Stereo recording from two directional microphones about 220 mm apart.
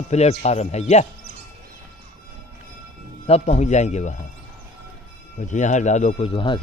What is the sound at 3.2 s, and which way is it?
A man's voice, 30° left (ahead or behind).